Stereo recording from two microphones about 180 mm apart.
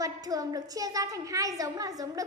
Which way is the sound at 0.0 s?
20° right (ahead or behind).